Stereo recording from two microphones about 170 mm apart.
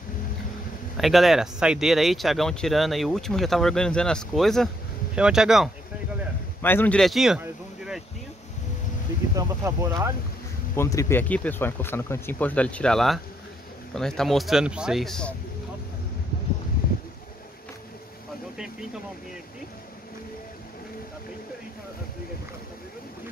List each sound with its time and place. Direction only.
0.9 s speech: centre (ahead or behind)
6.6 s a man's voice: 10° left (ahead or behind); by 8.0 s 5° right (ahead or behind)
9.3 s speech: 20° right (ahead or behind)
10.8 s speech: 15° left (ahead or behind)